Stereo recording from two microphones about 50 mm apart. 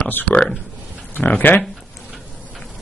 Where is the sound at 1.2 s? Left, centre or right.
Left.